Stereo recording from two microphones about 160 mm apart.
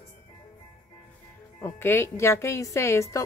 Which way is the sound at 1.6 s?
15° left (ahead or behind).